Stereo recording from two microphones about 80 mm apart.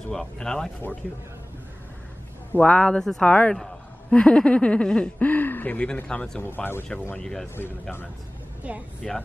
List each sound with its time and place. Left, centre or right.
0.1 s speech: centre
2.5 s speech: centre
6.4 s speech: left
7.2 s speech: centre
8.6 s a woman's voice: centre
9.0 s speech: centre